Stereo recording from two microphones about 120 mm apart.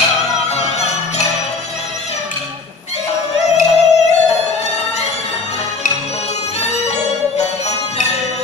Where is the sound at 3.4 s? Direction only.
65° left (ahead or behind).